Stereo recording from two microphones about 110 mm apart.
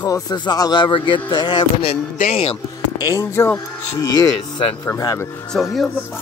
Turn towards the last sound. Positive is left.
turn(degrees=5)  # may be behind; listen again after turning